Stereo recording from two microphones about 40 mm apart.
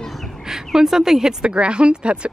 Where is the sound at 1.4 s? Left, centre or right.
Right.